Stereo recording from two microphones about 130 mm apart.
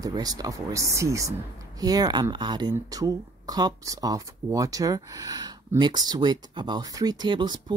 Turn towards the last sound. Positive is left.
turn(degrees=-40)  # may be behind; listen again after turning